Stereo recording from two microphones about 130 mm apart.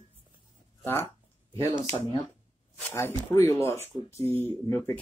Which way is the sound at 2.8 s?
15° left (ahead or behind).